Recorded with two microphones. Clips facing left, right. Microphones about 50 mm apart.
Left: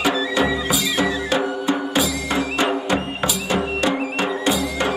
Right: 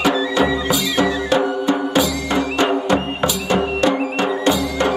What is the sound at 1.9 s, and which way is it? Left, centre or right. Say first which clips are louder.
Music: right 3 dB; centre.